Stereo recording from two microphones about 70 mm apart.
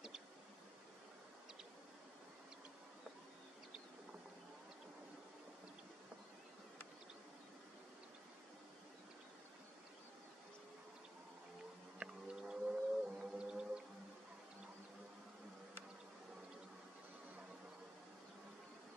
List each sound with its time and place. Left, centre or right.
12.0 s music: centre